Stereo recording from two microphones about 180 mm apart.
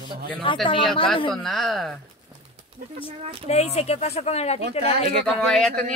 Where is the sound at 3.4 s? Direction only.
35° left (ahead or behind).